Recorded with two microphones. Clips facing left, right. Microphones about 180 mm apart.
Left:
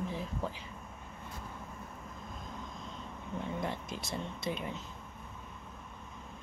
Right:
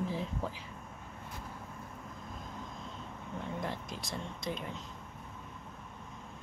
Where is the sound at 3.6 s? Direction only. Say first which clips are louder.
Left 1 dB; centre (ahead or behind).